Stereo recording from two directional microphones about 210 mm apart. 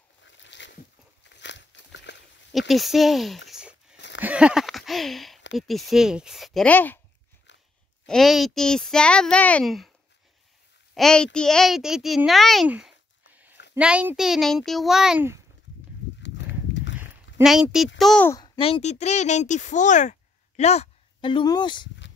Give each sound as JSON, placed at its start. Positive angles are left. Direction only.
{"t": 0.2, "sound": "boat", "side_deg": 60}
{"t": 1.2, "sound": "a sound", "side_deg": 55}
{"t": 2.7, "sound": "speech", "side_deg": 0}
{"t": 3.4, "sound": "a sound", "side_deg": -5}
{"t": 5.6, "sound": "speech", "side_deg": 0}
{"t": 8.1, "sound": "speech", "side_deg": 0}
{"t": 11.0, "sound": "a child's voice", "side_deg": 5}
{"t": 17.4, "sound": "speech", "side_deg": 0}
{"t": 18.3, "sound": "speech", "side_deg": 25}